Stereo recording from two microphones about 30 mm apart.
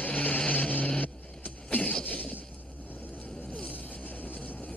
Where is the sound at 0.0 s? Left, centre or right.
Left.